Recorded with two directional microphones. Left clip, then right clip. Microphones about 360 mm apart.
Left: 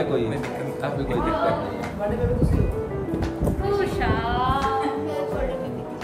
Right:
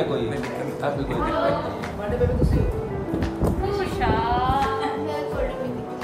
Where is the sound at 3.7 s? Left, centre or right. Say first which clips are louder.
Even; centre.